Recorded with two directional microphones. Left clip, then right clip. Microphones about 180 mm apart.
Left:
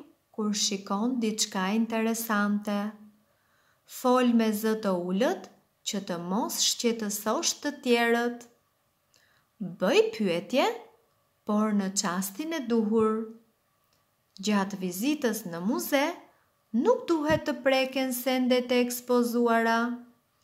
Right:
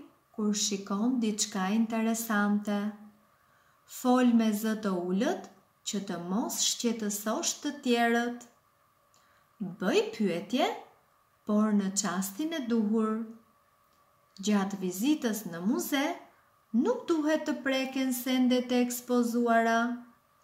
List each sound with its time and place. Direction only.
0.4 s speech: 45° left (ahead or behind)
9.8 s speech: 45° left (ahead or behind)
14.3 s speech: 40° left (ahead or behind)